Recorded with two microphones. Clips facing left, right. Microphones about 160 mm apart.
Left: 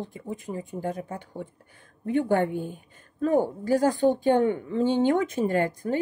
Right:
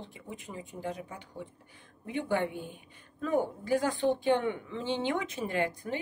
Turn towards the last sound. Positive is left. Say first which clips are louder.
# left 7 dB
turn(degrees=45)  # may be behind; listen again after turning